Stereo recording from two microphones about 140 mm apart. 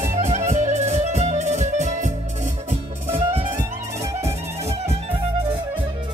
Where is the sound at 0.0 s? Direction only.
55° right (ahead or behind).